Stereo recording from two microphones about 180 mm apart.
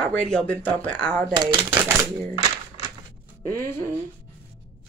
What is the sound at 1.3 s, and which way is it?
Speech, 25° right (ahead or behind).